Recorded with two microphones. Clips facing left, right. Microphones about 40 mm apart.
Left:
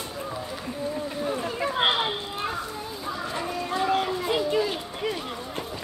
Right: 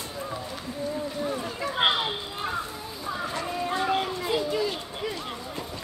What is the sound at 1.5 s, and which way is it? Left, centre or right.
Speech, left.